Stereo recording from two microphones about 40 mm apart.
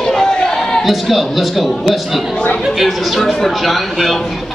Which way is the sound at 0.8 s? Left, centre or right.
Centre.